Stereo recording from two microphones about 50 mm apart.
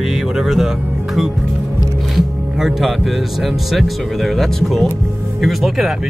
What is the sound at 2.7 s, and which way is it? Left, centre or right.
Speech, centre.